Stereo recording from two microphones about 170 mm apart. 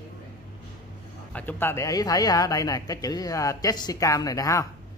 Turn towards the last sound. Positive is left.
turn(degrees=20)  # may be behind; listen again after turning